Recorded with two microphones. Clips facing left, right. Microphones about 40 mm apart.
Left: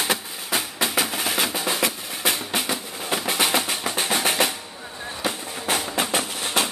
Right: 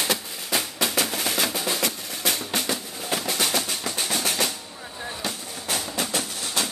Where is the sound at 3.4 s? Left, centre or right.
Left.